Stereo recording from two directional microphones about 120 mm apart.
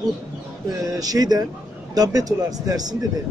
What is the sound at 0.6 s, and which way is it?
A man's voice, 30° right (ahead or behind).